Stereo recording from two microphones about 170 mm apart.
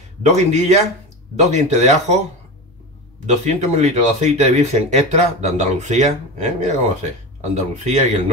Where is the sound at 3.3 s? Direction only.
40° right (ahead or behind).